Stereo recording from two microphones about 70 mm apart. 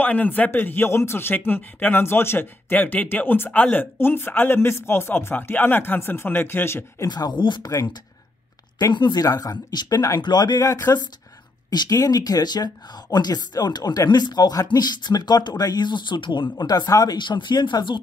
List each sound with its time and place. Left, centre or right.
0.0 s speech: left
7.1 s speech: left
8.9 s speech: left
10.2 s speech: left
11.7 s speech: left